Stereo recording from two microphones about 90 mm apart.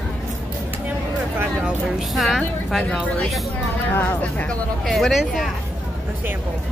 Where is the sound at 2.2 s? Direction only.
Centre (ahead or behind).